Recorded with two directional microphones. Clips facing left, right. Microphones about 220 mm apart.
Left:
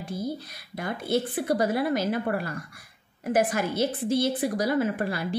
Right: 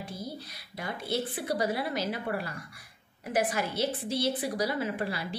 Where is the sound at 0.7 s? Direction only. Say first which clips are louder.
Left 6 dB; 50° left (ahead or behind).